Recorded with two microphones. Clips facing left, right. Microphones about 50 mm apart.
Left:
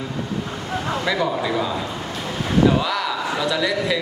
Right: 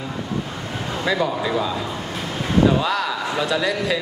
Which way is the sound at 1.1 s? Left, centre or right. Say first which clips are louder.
Right 2 dB; centre.